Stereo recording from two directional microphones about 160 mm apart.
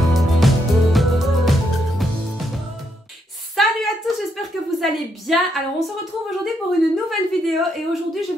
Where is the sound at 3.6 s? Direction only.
Centre (ahead or behind).